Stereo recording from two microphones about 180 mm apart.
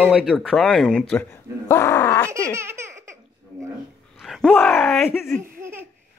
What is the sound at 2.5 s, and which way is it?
Laughter, 15° right (ahead or behind).